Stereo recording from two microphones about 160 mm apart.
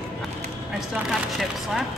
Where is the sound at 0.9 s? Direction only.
Centre (ahead or behind).